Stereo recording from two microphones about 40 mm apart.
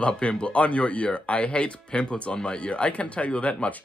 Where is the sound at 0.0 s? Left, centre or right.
Left.